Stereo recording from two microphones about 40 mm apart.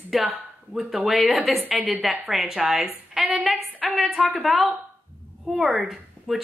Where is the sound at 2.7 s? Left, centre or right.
Right.